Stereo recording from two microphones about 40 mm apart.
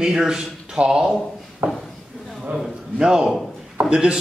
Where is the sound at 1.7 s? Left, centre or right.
Centre.